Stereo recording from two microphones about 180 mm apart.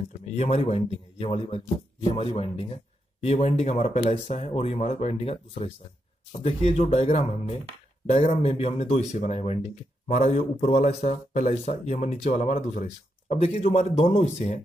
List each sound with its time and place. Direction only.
0.4 s speech: 35° left (ahead or behind)